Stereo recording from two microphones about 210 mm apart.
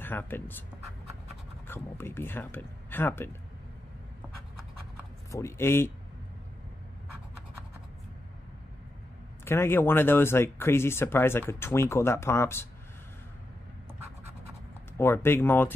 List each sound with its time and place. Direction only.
0.0 s speech: 10° left (ahead or behind)
1.7 s speech: 10° left (ahead or behind)
5.3 s speech: 10° left (ahead or behind)
9.4 s speech: 10° left (ahead or behind)
15.0 s speech: 10° left (ahead or behind)